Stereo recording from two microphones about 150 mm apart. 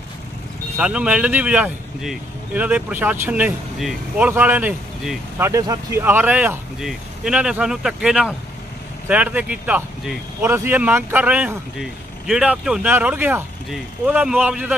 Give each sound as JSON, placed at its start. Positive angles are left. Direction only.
{"t": 0.7, "sound": "speech", "side_deg": -10}
{"t": 5.4, "sound": "speech", "side_deg": -25}